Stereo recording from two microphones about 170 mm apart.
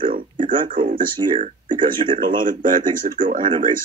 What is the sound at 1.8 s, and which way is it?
Speech, 30° right (ahead or behind).